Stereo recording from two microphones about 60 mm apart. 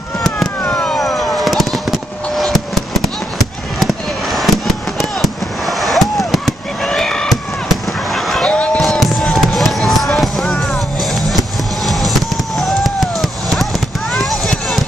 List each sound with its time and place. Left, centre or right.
0.7 s vehicle: centre
0.9 s fireworks: centre
8.5 s basketball bounce: centre
9.2 s music: centre
13.2 s a sound: centre